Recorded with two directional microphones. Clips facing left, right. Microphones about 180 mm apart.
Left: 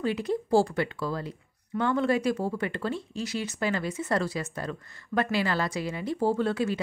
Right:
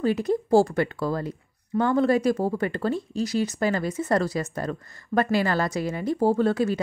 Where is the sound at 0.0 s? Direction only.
40° right (ahead or behind).